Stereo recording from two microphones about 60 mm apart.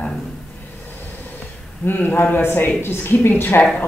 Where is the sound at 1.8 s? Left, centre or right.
Left.